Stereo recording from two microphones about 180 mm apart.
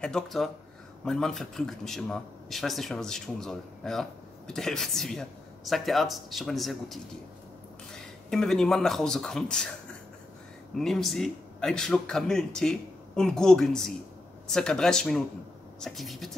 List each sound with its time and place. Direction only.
0.0 s speech: centre (ahead or behind)
10.8 s speech: centre (ahead or behind)